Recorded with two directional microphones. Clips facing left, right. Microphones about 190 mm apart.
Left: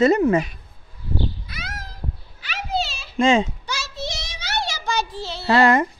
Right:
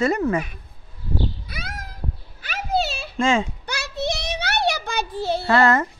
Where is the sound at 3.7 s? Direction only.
60° right (ahead or behind).